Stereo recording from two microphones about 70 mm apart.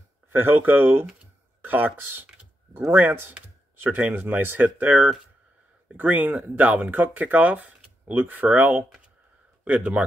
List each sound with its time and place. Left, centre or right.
0.3 s speech: right